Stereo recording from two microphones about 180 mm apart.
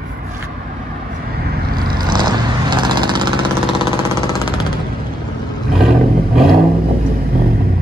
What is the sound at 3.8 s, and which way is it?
Jackhammer, 25° left (ahead or behind).